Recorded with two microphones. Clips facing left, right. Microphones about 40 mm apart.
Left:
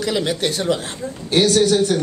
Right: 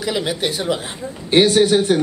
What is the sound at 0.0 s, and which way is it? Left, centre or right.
Speech, centre.